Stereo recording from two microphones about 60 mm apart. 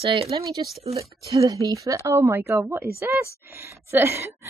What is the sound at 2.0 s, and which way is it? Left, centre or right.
Speech, right.